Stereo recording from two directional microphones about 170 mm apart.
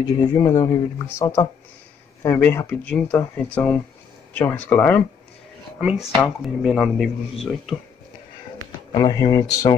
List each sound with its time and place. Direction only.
0.0 s speech: 20° left (ahead or behind)
5.8 s speech: 5° right (ahead or behind)
8.9 s speech: 20° left (ahead or behind)